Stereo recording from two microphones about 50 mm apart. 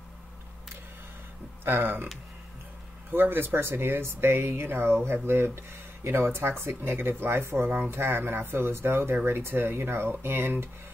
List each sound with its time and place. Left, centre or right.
1.6 s speech: right
3.1 s speech: right
7.9 s speech: right